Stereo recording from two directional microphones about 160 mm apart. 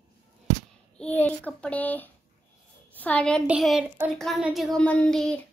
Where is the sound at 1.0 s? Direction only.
10° left (ahead or behind).